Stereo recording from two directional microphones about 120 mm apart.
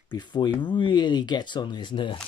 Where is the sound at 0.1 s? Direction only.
35° left (ahead or behind).